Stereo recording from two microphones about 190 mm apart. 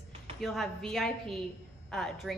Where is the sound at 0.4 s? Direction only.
Centre (ahead or behind).